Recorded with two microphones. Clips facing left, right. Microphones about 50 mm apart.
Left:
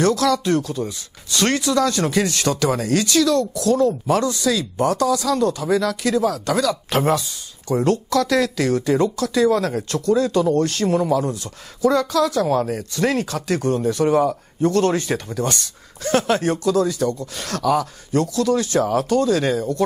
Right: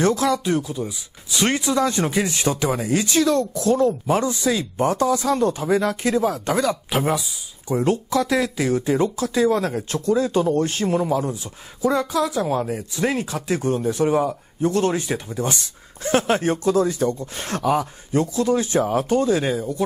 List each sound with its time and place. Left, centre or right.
0.0 s speech: right
6.9 s speech: centre
14.0 s speech: centre